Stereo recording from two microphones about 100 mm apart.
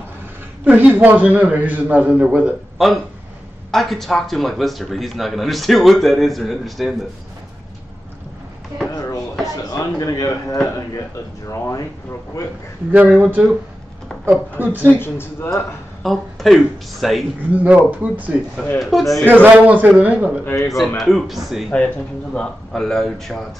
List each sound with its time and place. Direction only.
0.7 s a man's voice: 15° right (ahead or behind)
3.7 s a man's voice: centre (ahead or behind)
8.9 s a sound: 35° left (ahead or behind)
9.7 s a man's voice: 35° left (ahead or behind)
12.9 s a man's voice: 15° right (ahead or behind)
15.0 s a man's voice: 25° left (ahead or behind)
16.0 s a man's voice: centre (ahead or behind)
17.5 s a man's voice: 15° right (ahead or behind)
18.8 s a man's voice: centre (ahead or behind)
19.2 s a man's voice: 20° right (ahead or behind)
20.4 s a man's voice: 30° left (ahead or behind)
21.0 s a man's voice: centre (ahead or behind)
21.7 s a man's voice: 10° left (ahead or behind)